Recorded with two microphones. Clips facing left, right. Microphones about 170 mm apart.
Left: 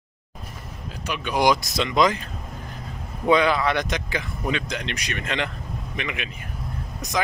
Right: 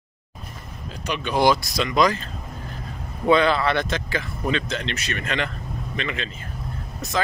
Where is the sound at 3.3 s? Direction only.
10° left (ahead or behind).